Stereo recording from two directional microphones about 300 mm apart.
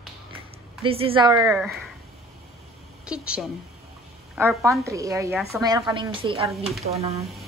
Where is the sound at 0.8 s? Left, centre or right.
Centre.